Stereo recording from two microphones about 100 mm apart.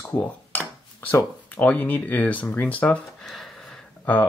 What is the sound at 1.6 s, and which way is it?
Speech, 20° left (ahead or behind).